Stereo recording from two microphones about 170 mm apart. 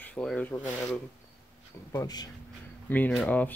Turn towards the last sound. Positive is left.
turn(degrees=10)  # may be behind; listen again after turning